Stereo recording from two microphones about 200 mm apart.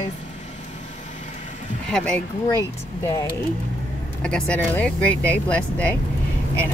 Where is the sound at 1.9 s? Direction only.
5° left (ahead or behind).